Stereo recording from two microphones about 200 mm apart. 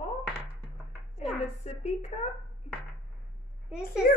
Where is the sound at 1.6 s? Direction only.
35° left (ahead or behind).